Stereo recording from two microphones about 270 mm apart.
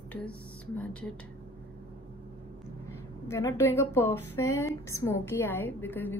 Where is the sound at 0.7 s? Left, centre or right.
Centre.